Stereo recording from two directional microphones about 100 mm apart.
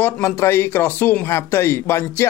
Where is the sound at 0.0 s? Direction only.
25° left (ahead or behind).